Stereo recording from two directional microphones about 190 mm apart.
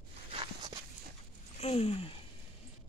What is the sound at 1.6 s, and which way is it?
Speech, 30° left (ahead or behind).